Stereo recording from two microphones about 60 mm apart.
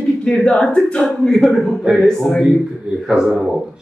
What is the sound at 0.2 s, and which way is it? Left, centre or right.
A woman's voice, centre.